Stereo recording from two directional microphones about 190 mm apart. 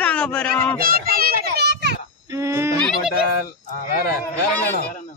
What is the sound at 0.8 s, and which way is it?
A child's voice, 50° right (ahead or behind).